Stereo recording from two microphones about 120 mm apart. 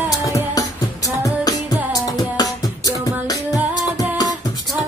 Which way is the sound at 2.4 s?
30° left (ahead or behind).